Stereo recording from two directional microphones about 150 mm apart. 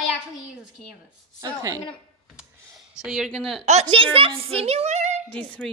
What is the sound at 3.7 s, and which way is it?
A woman's voice, 40° right (ahead or behind).